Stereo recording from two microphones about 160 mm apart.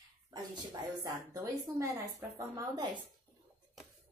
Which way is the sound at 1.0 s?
20° right (ahead or behind).